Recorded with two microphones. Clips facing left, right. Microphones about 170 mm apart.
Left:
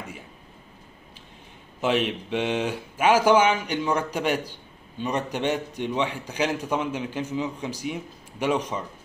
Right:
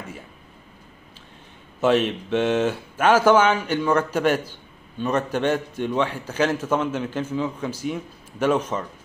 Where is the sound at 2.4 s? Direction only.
50° right (ahead or behind).